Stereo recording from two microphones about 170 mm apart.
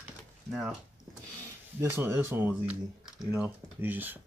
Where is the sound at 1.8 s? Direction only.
15° right (ahead or behind).